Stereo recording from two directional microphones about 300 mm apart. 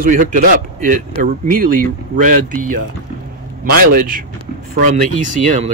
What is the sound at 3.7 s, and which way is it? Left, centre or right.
Speech, right.